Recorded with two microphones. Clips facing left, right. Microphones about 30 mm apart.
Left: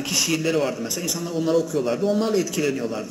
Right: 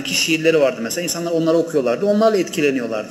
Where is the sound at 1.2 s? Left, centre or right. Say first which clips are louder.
Right 5 dB; centre.